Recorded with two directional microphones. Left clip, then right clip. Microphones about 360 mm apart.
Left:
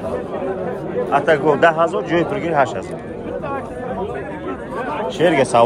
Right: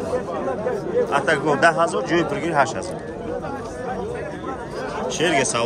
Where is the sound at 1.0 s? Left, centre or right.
Centre.